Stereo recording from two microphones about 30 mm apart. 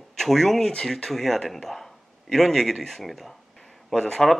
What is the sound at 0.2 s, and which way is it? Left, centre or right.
Speech, centre.